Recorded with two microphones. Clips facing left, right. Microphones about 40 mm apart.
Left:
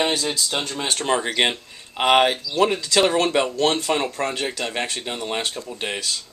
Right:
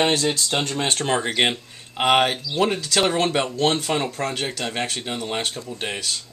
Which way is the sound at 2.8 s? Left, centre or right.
Left.